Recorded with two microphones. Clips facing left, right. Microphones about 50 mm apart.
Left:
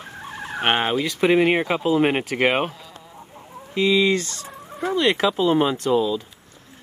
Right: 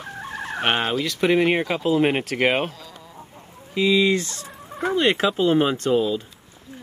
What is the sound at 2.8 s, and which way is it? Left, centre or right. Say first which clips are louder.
Chicken: right 1 dB; centre.